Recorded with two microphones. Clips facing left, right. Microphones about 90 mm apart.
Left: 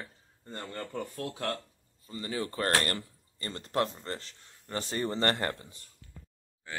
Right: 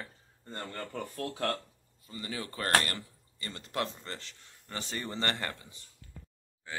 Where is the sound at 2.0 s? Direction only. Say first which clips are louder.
Left 5 dB; 30° left (ahead or behind).